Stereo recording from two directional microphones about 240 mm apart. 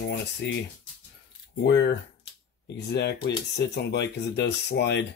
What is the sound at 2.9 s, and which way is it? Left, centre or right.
Speech, left.